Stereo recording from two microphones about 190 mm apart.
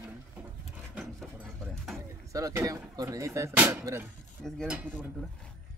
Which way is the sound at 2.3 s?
15° right (ahead or behind).